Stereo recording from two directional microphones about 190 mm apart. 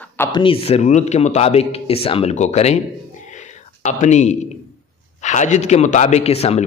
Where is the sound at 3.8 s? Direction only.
40° left (ahead or behind).